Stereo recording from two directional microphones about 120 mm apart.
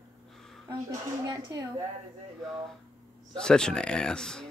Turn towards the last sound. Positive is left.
turn(degrees=5)  # may be behind; listen again after turning